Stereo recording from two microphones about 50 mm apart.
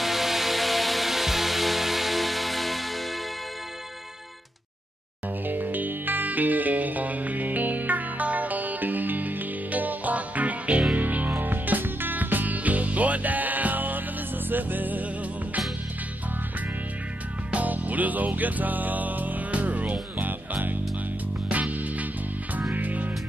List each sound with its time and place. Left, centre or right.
0.0 s music: centre
5.4 s music: right
17.5 s music: right